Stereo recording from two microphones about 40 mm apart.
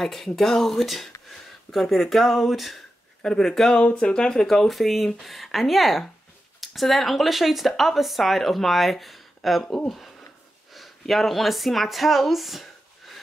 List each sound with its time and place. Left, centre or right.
0.0 s speech: centre
3.2 s speech: centre
4.6 s speech: centre